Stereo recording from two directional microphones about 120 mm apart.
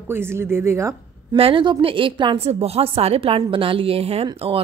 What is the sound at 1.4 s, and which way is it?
A woman's voice, 45° right (ahead or behind).